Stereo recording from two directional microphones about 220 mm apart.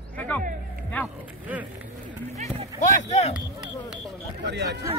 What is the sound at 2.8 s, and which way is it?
Speech, 30° left (ahead or behind).